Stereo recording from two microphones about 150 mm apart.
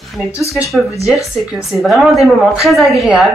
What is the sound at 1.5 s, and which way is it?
Speech, centre (ahead or behind).